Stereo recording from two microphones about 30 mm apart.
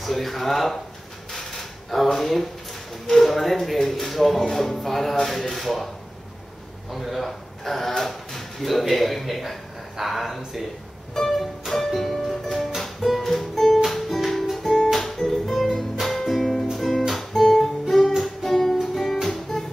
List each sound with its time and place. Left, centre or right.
0.0 s speech: centre
1.3 s creak: centre
2.0 s speech: centre
6.9 s speech: centre
11.2 s music: centre
14.6 s music: centre
15.5 s music: centre
17.1 s guitar: centre
19.2 s music: centre